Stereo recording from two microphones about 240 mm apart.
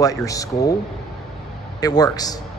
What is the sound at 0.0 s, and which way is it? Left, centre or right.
Speech, centre.